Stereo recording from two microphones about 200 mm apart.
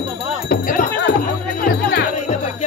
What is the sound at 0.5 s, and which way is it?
Music, 40° left (ahead or behind).